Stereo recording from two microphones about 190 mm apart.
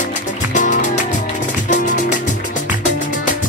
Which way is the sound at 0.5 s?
40° left (ahead or behind).